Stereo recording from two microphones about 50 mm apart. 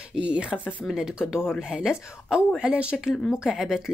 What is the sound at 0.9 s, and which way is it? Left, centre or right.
Speech, centre.